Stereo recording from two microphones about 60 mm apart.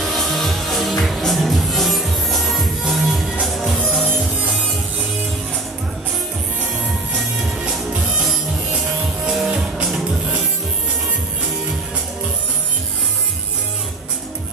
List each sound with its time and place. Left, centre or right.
0.0 s music: centre
4.1 s music: right
9.2 s music: centre